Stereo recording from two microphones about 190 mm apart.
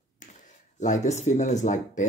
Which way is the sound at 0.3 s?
40° left (ahead or behind).